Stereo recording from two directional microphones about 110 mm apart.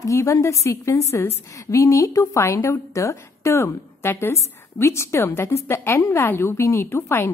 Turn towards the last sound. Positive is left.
turn(degrees=20)  # may be behind; listen again after turning